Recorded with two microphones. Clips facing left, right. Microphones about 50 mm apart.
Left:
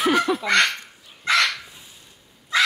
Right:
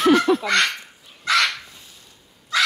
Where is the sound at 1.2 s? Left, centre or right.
Left.